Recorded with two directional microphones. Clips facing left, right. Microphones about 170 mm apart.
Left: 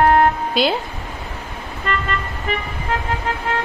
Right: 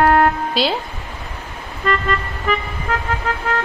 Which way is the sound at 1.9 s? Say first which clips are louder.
Right 4 dB; 40° right (ahead or behind).